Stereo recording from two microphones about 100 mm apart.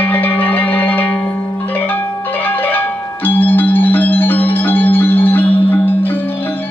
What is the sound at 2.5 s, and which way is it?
Music, 20° left (ahead or behind).